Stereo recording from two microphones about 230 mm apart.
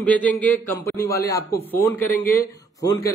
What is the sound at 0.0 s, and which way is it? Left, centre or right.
A man's voice, centre.